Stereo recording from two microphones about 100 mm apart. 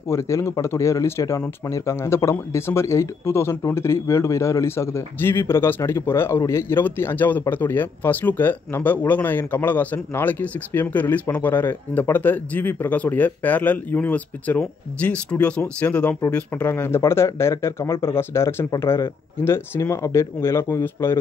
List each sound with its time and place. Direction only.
0.1 s speech: 30° left (ahead or behind)